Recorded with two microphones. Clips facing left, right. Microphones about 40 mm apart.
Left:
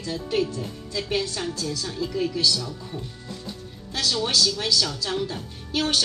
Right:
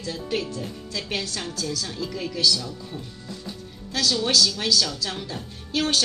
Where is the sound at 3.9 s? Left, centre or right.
Left.